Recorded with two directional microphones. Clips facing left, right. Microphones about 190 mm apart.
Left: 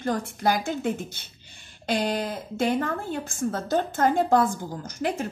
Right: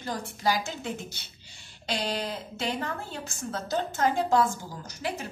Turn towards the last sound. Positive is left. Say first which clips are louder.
# left 6 dB
turn(degrees=50)  # may be behind; listen again after turning